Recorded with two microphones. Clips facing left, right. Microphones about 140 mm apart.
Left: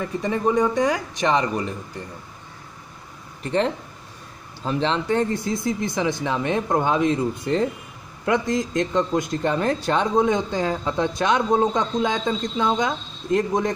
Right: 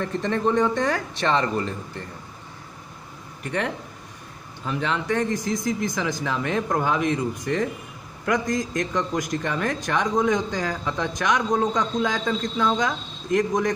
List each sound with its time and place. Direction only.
0.0 s speech: 10° left (ahead or behind)
3.4 s a man's voice: 25° left (ahead or behind)